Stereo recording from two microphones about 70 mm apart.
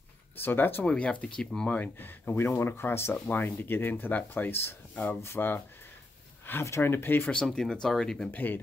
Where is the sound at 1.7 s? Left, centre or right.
Left.